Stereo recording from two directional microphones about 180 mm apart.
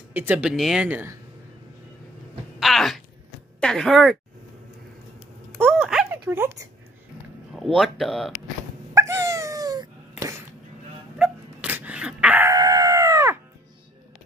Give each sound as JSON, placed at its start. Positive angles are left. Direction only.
{"t": 0.1, "sound": "speech", "side_deg": -10}
{"t": 2.6, "sound": "a sound", "side_deg": 0}
{"t": 3.6, "sound": "speech", "side_deg": 5}
{"t": 5.6, "sound": "a sound", "side_deg": 0}
{"t": 6.2, "sound": "speech", "side_deg": -15}
{"t": 7.5, "sound": "speech", "side_deg": 0}
{"t": 8.9, "sound": "dog", "side_deg": -15}
{"t": 11.1, "sound": "a sound", "side_deg": -5}
{"t": 12.5, "sound": "chicken", "side_deg": -20}